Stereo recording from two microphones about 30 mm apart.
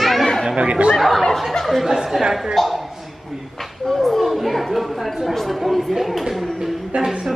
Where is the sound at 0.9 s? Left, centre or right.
Centre.